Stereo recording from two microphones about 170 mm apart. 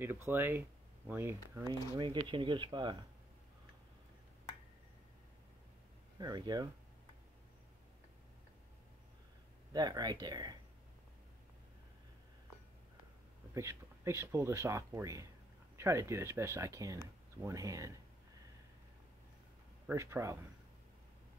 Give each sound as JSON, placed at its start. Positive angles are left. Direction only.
{"t": 0.0, "sound": "speech", "side_deg": -15}
{"t": 1.7, "sound": "speech", "side_deg": -25}
{"t": 6.1, "sound": "speech", "side_deg": -25}
{"t": 9.7, "sound": "speech", "side_deg": -25}
{"t": 13.6, "sound": "speech", "side_deg": -15}
{"t": 19.9, "sound": "speech", "side_deg": -15}